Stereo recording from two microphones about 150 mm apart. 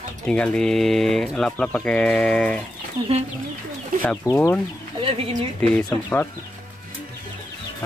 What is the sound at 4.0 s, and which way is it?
Speech, 10° left (ahead or behind).